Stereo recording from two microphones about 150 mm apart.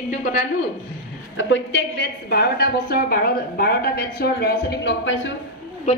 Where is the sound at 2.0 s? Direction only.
90° left.